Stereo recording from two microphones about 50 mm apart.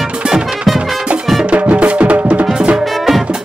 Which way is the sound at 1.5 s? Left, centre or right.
Right.